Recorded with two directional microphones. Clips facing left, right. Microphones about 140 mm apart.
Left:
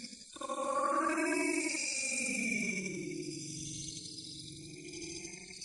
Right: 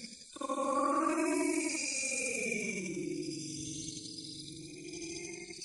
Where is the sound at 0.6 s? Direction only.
20° right (ahead or behind).